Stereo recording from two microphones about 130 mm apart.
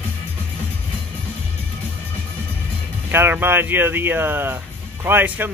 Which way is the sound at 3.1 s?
15° right (ahead or behind).